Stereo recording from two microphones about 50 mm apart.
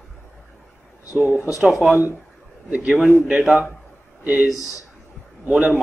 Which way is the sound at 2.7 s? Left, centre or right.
Right.